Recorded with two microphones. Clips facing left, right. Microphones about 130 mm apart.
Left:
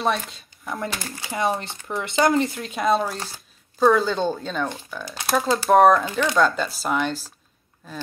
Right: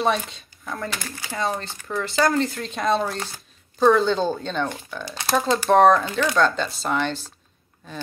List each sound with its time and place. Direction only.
0.0 s speech: centre (ahead or behind)
0.7 s speech: 20° left (ahead or behind)
2.5 s speech: 5° left (ahead or behind)